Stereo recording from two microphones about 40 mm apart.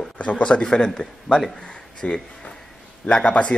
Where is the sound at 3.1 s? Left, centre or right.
Left.